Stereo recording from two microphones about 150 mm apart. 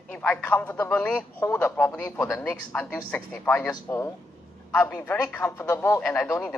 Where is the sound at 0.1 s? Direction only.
10° left (ahead or behind).